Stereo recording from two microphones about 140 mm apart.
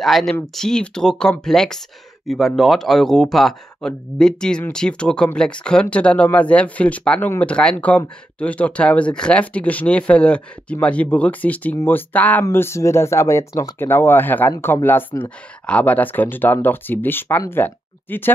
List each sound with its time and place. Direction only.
0.0 s speech: centre (ahead or behind)